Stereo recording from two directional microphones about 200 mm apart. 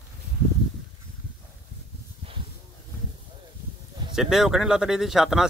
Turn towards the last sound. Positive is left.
turn(degrees=0)  # may be behind; listen again after turning